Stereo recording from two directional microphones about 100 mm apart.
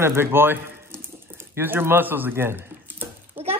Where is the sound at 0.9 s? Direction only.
20° right (ahead or behind).